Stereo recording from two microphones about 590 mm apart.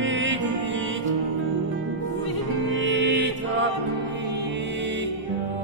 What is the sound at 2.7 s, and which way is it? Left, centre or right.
Music, centre.